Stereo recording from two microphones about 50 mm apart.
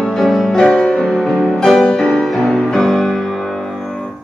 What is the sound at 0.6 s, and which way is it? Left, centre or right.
Music, centre.